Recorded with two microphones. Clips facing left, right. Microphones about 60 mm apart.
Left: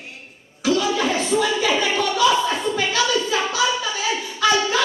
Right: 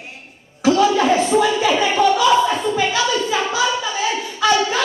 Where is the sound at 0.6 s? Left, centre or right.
Right.